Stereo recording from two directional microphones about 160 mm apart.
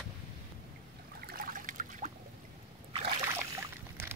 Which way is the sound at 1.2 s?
65° right (ahead or behind).